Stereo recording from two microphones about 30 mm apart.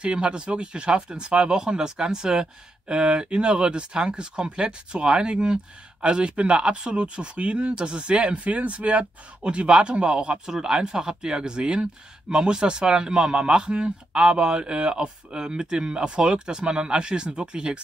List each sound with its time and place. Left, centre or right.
0.0 s speech: right
2.9 s speech: right
6.6 s speech: right
8.5 s speech: right